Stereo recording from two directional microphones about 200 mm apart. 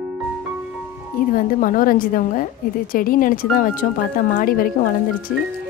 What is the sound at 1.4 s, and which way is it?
Speech, 45° left (ahead or behind).